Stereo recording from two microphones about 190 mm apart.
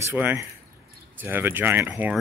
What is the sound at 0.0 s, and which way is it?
Speech, 10° right (ahead or behind).